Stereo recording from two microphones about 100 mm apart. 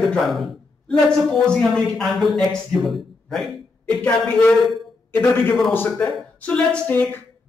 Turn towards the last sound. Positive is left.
turn(degrees=15)  # may be behind; listen again after turning